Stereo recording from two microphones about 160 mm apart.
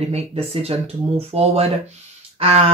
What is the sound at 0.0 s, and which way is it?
Speech, 40° right (ahead or behind).